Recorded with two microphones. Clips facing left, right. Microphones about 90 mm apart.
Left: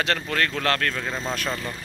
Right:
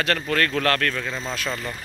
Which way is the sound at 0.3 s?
20° left (ahead or behind).